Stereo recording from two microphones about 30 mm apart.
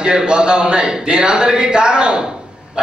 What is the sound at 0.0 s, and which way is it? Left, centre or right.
Speech, right.